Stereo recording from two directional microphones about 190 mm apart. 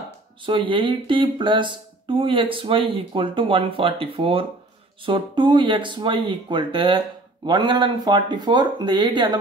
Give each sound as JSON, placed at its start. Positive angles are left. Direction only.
{"t": 0.5, "sound": "speech", "side_deg": -25}